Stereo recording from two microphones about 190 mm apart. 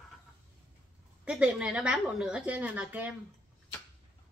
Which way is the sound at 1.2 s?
5° right (ahead or behind).